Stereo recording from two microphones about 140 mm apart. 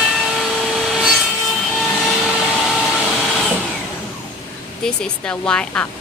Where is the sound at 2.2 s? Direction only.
Centre (ahead or behind).